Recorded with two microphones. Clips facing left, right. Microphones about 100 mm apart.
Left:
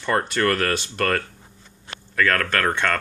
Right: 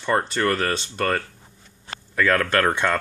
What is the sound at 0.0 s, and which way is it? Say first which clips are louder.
Speech: even; 5° right (ahead or behind).